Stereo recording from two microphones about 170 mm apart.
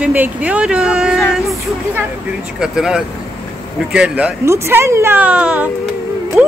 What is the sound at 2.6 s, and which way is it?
A woman's voice, 5° right (ahead or behind).